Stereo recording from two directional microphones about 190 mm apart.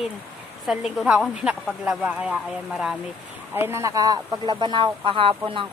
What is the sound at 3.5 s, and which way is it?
Speech, 15° right (ahead or behind).